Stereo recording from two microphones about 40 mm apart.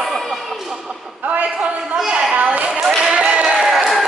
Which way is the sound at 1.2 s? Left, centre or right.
Right.